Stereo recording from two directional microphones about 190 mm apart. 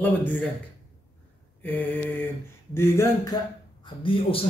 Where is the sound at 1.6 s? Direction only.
10° left (ahead or behind).